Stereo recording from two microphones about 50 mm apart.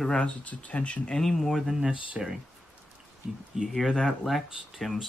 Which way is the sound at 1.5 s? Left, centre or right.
Centre.